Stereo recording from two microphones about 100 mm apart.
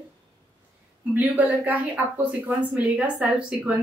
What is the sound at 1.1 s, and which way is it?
A woman's voice, 15° right (ahead or behind).